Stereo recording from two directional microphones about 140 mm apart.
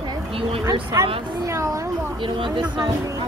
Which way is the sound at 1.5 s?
20° right (ahead or behind).